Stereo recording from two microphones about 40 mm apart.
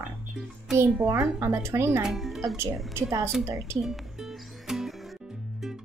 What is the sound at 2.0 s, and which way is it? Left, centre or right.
Speech, centre.